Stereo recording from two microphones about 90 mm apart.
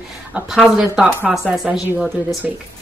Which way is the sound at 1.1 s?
20° right (ahead or behind).